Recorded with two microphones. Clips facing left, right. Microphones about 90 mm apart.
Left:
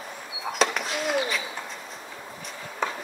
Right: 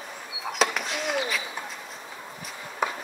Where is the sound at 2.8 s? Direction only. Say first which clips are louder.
Right 1 dB; 10° right (ahead or behind).